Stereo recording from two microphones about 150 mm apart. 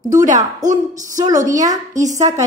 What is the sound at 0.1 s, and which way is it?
Speech, 55° right (ahead or behind).